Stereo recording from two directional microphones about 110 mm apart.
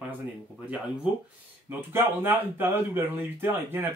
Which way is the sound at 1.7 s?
20° right (ahead or behind).